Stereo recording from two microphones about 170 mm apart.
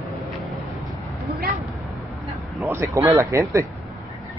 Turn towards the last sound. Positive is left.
turn(degrees=-15)  # may be behind; listen again after turning